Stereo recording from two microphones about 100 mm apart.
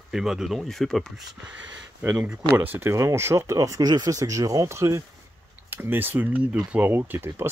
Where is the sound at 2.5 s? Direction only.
20° right (ahead or behind).